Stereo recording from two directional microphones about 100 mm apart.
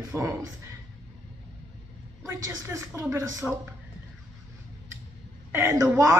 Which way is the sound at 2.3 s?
25° right (ahead or behind).